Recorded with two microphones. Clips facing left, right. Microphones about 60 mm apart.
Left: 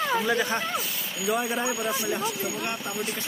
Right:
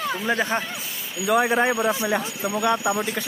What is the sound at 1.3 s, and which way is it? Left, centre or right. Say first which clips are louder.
Speech: right 7 dB; right.